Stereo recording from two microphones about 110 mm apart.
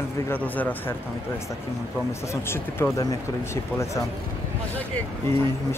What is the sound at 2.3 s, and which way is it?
Speech, 25° left (ahead or behind).